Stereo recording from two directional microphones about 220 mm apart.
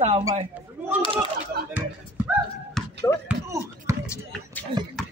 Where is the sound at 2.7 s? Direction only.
10° left (ahead or behind).